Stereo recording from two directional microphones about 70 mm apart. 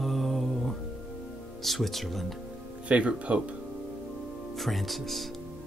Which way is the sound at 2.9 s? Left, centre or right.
Centre.